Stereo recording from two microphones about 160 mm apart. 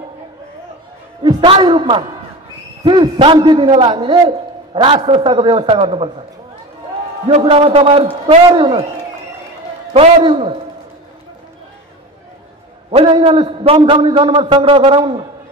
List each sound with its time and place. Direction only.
1.2 s a man's voice: 30° right (ahead or behind)
7.2 s a man's voice: 40° right (ahead or behind)
9.9 s a man's voice: 35° right (ahead or behind)
12.9 s a man's voice: 35° right (ahead or behind)